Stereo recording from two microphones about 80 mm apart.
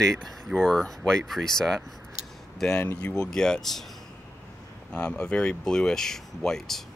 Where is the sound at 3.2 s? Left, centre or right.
Centre.